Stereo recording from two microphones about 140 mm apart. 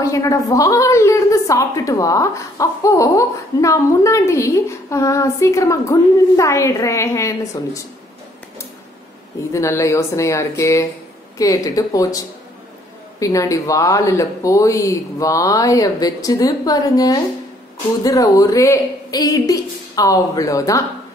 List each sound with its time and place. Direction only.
0.0 s a woman's voice: 25° left (ahead or behind)
9.5 s a woman's voice: 20° left (ahead or behind)